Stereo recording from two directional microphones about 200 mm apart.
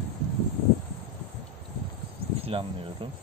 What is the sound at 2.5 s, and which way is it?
Speech, 30° right (ahead or behind).